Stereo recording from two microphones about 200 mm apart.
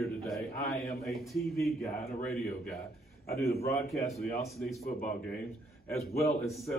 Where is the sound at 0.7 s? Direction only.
15° left (ahead or behind).